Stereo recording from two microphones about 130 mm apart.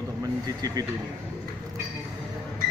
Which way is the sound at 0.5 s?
30° right (ahead or behind).